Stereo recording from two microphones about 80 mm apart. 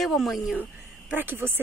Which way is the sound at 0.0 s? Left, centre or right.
Centre.